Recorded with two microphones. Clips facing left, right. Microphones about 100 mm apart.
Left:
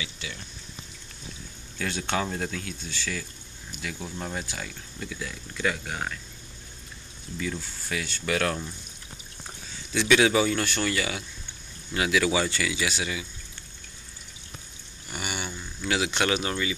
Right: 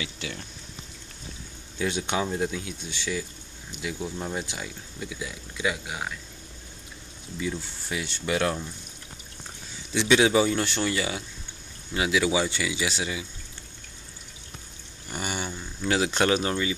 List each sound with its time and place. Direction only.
0.0 s speech: 50° right (ahead or behind)
1.8 s speech: 15° right (ahead or behind)
7.3 s speech: 20° right (ahead or behind)
9.9 s speech: 25° right (ahead or behind)
15.0 s a sound: 35° right (ahead or behind)
15.8 s speech: 35° right (ahead or behind)